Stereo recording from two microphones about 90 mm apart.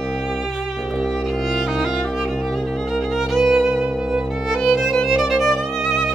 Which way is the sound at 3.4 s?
10° right (ahead or behind).